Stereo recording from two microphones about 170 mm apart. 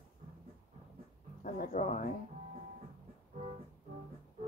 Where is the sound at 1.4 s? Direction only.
50° left (ahead or behind).